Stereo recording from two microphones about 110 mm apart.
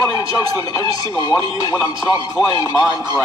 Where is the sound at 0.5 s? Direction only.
35° left (ahead or behind).